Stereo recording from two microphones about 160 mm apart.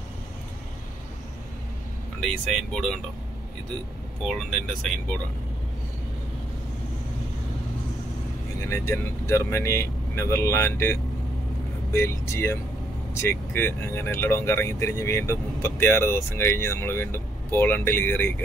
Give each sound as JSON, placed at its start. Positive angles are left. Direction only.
{"t": 2.1, "sound": "speech", "side_deg": 5}
{"t": 4.5, "sound": "speech", "side_deg": 5}
{"t": 8.6, "sound": "speech", "side_deg": 15}